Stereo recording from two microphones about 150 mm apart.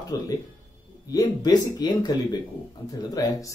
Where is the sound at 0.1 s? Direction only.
25° left (ahead or behind).